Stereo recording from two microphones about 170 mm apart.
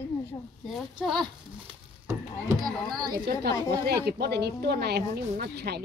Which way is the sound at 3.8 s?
70° right (ahead or behind).